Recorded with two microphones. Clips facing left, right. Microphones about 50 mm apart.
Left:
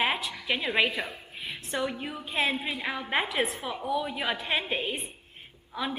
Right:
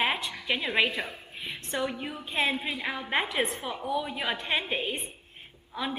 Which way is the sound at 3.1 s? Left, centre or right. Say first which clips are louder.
Even; centre.